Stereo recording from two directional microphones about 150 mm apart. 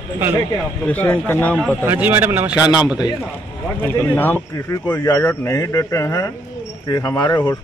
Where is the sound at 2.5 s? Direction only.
25° left (ahead or behind).